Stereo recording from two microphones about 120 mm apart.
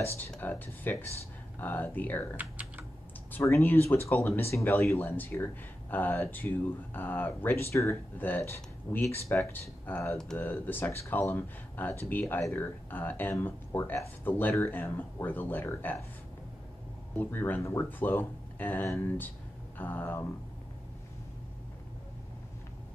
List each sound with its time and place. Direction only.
0.4 s speech: 15° left (ahead or behind)
2.3 s typing: 15° right (ahead or behind)
3.3 s speech: 20° left (ahead or behind)
17.2 s speech: 15° left (ahead or behind)